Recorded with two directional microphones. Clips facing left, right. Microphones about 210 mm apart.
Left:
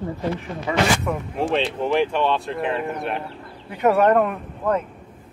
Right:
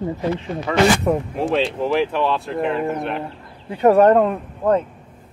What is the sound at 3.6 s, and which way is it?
Speech, 30° right (ahead or behind).